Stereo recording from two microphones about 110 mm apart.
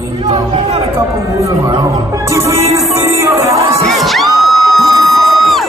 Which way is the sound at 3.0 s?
25° right (ahead or behind).